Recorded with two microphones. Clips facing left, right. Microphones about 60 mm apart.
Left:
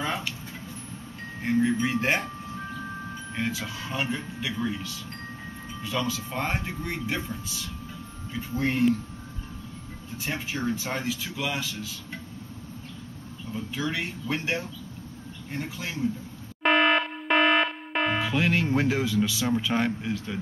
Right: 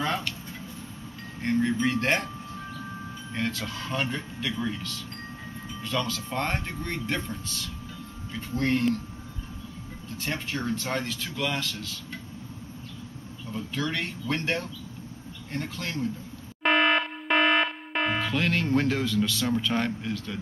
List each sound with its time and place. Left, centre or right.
0.0 s a sound: centre
1.4 s speech: centre
3.3 s speech: centre
10.1 s speech: centre
13.5 s speech: centre